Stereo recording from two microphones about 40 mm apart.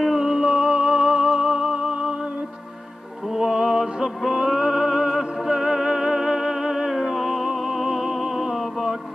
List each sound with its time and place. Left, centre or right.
0.0 s music: centre
0.5 s music: right
3.3 s music: centre